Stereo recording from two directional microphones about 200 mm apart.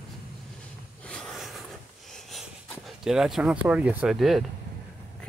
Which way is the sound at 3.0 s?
Centre (ahead or behind).